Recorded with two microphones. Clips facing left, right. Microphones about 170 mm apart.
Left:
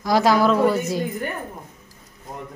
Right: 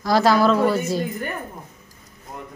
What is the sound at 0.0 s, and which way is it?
A woman's voice, 15° left (ahead or behind).